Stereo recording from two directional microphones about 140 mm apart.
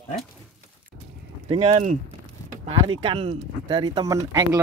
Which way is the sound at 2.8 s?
40° right (ahead or behind).